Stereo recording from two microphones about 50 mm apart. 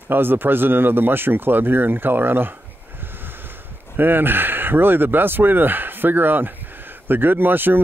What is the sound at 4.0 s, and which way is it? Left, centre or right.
Speech, right.